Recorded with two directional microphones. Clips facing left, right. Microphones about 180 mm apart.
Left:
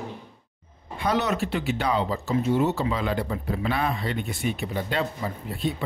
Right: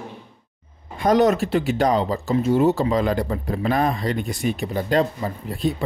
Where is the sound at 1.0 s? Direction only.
45° right (ahead or behind).